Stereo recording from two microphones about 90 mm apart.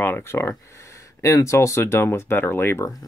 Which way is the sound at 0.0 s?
25° left (ahead or behind).